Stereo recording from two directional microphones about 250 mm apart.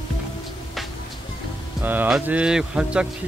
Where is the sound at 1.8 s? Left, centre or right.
Centre.